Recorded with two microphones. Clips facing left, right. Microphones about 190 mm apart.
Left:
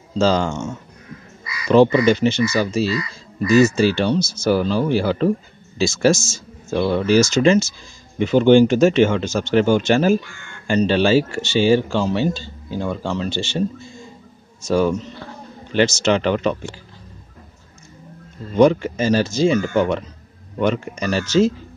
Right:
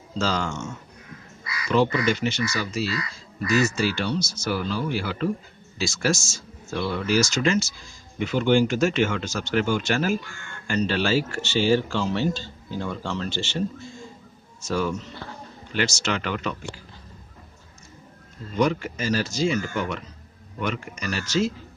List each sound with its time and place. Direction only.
0.2 s speech: 25° left (ahead or behind)
1.7 s speech: 30° left (ahead or behind)
14.6 s speech: 20° left (ahead or behind)
18.6 s speech: 25° left (ahead or behind)